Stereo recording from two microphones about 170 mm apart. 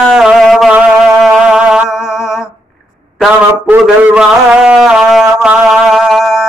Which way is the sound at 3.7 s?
5° right (ahead or behind).